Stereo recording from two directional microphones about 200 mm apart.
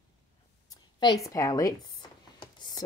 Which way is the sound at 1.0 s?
20° left (ahead or behind).